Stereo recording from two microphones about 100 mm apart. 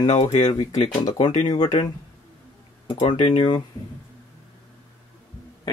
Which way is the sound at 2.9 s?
60° left (ahead or behind).